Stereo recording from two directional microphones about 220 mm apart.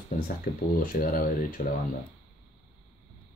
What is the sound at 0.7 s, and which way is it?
Speech, 40° left (ahead or behind).